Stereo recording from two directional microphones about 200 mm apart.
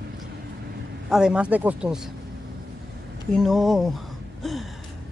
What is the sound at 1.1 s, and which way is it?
Speech, 5° right (ahead or behind).